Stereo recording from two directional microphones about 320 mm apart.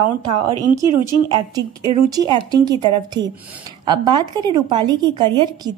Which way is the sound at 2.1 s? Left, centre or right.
Centre.